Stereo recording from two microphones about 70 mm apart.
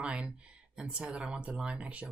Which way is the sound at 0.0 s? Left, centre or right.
Centre.